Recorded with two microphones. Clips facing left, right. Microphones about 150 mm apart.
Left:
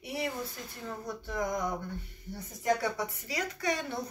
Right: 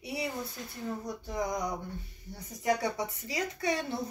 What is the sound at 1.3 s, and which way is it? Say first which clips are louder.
A woman's voice: left 1 dB; 20° right (ahead or behind).